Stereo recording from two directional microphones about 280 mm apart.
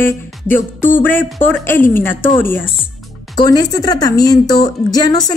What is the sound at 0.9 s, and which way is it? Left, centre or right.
A woman's voice, centre.